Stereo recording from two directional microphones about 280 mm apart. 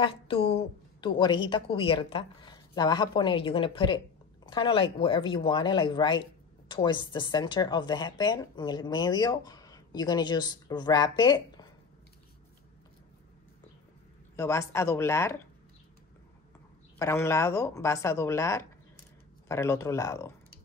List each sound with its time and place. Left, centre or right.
0.0 s speech: centre
14.3 s speech: centre
17.0 s speech: centre